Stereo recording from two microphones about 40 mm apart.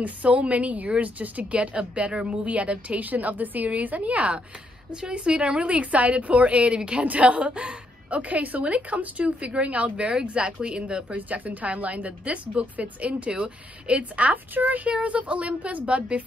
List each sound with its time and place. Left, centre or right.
0.0 s a woman's voice: right
11.1 s a woman's voice: right
14.5 s a woman's voice: right
14.9 s a woman's voice: right